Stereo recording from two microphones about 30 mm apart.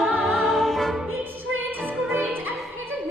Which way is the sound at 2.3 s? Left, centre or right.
Right.